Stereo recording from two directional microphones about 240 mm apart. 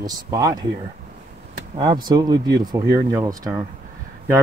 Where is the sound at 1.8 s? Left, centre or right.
Centre.